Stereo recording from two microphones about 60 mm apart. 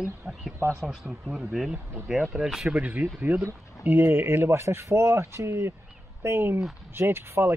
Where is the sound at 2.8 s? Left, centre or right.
Right.